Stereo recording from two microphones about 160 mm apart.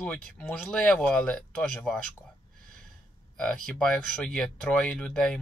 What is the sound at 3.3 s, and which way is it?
Speech, 5° left (ahead or behind).